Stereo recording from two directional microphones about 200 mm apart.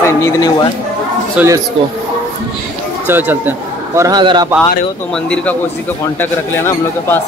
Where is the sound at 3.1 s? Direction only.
10° right (ahead or behind).